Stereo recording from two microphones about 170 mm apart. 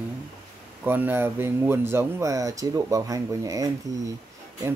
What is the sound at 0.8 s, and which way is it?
Speech, 10° right (ahead or behind).